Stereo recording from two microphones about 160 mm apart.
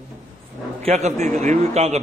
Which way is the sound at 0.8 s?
45° right (ahead or behind).